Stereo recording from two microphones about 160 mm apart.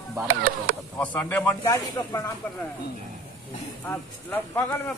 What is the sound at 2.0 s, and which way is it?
Speech, 20° left (ahead or behind).